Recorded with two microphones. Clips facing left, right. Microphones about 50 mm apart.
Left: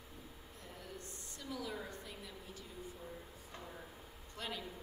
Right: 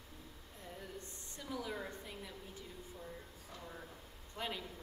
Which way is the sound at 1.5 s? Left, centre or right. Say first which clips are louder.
Right 1 dB; centre.